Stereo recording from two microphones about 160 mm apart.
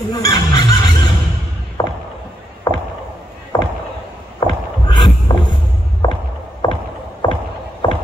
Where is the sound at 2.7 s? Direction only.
25° left (ahead or behind).